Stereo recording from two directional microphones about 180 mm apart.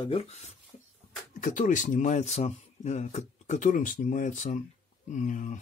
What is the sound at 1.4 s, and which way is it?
Speech, 45° left (ahead or behind).